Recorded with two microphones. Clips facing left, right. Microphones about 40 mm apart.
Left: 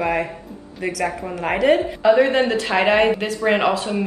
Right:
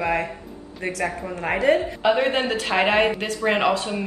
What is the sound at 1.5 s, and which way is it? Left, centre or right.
Speech, left.